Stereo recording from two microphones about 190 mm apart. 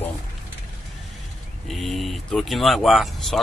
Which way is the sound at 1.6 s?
Centre (ahead or behind).